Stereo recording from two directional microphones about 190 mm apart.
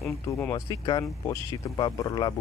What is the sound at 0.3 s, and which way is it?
Speech, 15° left (ahead or behind).